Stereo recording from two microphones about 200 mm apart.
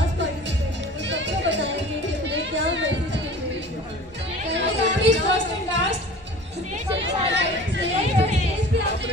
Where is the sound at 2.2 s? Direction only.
65° right (ahead or behind).